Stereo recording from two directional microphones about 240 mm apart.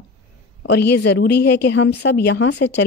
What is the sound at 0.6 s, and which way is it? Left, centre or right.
A woman's voice, left.